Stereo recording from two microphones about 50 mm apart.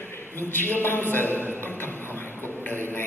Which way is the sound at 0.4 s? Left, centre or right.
Left.